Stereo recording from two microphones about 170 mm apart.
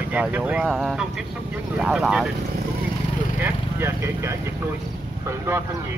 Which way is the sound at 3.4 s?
15° right (ahead or behind).